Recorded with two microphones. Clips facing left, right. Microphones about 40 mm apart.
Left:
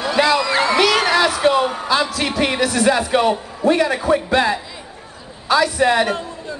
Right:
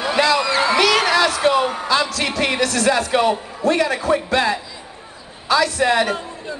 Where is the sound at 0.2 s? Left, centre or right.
Centre.